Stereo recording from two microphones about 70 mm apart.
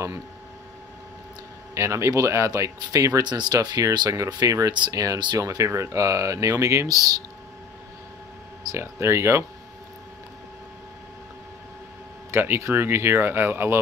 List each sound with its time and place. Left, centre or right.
1.8 s speech: right
3.3 s speech: right
3.6 s speech: right
4.3 s speech: right
5.4 s speech: right
6.9 s speech: right
8.7 s speech: right
12.3 s speech: right